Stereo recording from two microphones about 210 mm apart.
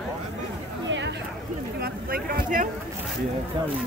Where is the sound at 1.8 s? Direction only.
45° right (ahead or behind).